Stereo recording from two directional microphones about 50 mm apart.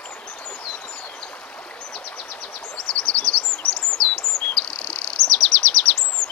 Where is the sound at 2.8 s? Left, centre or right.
Centre.